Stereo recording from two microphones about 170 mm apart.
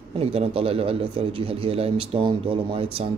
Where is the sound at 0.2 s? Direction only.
35° right (ahead or behind).